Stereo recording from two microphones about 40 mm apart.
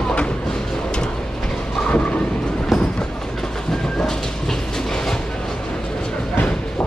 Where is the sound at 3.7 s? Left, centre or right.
Centre.